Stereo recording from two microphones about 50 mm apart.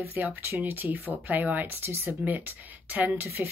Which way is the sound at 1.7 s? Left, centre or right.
Right.